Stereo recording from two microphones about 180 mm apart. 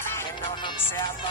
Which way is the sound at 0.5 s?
25° left (ahead or behind).